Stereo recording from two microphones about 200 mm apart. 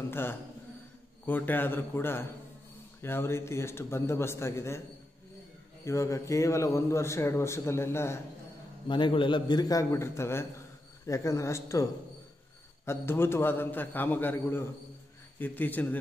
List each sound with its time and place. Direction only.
0.1 s a man's voice: 10° left (ahead or behind)
5.9 s a man's voice: 15° left (ahead or behind)
8.8 s a man's voice: 25° left (ahead or behind); by 16.0 s 10° left (ahead or behind)